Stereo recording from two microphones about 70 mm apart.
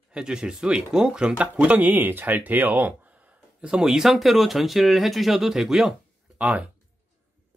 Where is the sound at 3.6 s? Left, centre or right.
Centre.